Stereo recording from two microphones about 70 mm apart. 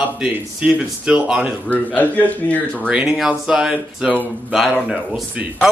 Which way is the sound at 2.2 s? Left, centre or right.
Left.